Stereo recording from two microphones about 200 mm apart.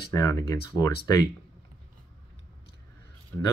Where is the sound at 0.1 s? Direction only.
15° left (ahead or behind).